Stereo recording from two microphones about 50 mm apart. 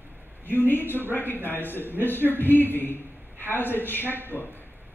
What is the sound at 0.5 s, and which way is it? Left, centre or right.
A man's voice, left.